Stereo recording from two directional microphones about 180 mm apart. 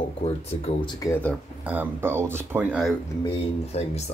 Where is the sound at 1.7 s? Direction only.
10° right (ahead or behind).